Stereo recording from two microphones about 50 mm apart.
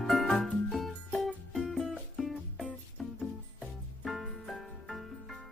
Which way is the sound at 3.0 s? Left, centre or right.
Centre.